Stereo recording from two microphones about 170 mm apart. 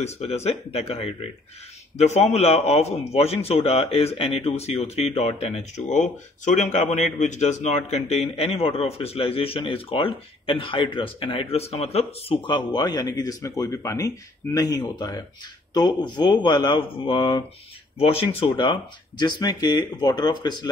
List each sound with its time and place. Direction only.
0.0 s a man's voice: 40° left (ahead or behind)